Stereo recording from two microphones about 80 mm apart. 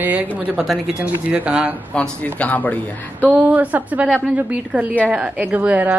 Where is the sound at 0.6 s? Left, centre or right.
Centre.